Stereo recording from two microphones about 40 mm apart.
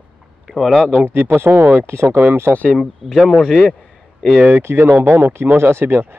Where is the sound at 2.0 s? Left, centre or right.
Right.